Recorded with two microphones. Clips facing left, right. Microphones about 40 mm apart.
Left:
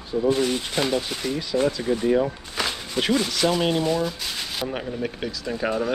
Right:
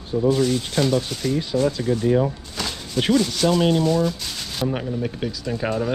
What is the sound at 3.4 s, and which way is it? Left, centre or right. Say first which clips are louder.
Speech: right 3 dB; centre.